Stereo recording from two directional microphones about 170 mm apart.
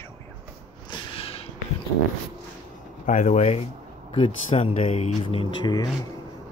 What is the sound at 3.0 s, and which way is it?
Speech, 45° left (ahead or behind).